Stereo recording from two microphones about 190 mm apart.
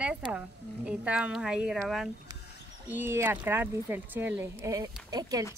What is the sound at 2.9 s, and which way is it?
A woman's voice, 10° right (ahead or behind).